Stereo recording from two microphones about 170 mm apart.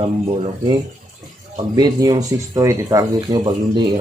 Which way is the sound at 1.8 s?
20° right (ahead or behind).